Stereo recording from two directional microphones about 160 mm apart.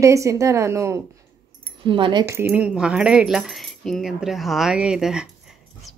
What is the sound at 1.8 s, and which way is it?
Speech, 30° right (ahead or behind).